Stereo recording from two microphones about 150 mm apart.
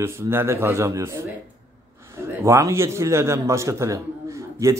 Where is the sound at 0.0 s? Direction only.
15° right (ahead or behind).